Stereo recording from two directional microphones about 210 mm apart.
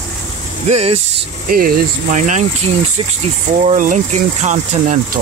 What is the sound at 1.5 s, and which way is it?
Speech, 45° right (ahead or behind).